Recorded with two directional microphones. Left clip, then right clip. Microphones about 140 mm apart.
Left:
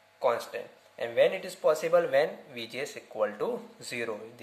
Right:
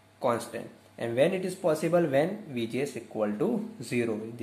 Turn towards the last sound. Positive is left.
turn(degrees=15)  # may be behind; listen again after turning